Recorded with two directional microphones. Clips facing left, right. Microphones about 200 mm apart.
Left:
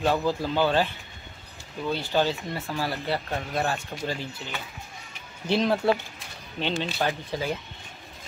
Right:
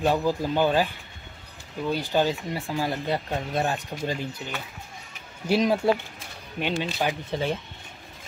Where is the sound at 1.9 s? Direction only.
15° right (ahead or behind).